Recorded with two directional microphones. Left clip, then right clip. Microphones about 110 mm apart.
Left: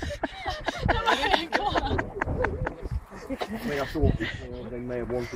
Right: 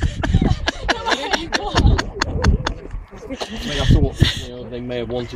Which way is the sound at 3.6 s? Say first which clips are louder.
Right 7 dB; 40° right (ahead or behind).